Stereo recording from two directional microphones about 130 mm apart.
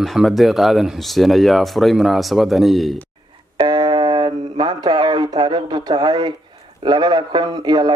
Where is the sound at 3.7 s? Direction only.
35° right (ahead or behind).